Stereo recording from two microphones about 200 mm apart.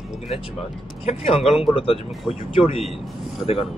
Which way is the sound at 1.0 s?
30° left (ahead or behind).